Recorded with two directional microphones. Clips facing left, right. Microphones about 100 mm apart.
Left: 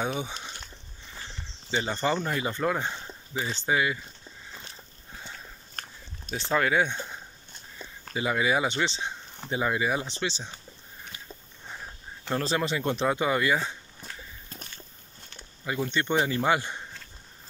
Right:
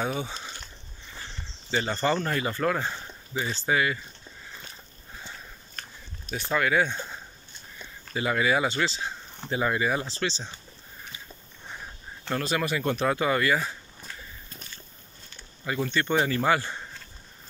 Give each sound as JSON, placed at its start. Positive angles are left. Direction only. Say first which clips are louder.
{"t": 0.0, "sound": "speech", "louder": "right 1 dB", "side_deg": 15}
{"t": 1.7, "sound": "speech", "louder": "right 1 dB", "side_deg": 15}
{"t": 6.3, "sound": "speech", "louder": "even", "side_deg": 25}
{"t": 8.1, "sound": "speech", "louder": "right 1 dB", "side_deg": 15}
{"t": 12.4, "sound": "speech", "louder": "even", "side_deg": 30}
{"t": 15.6, "sound": "speech", "louder": "right 1 dB", "side_deg": 15}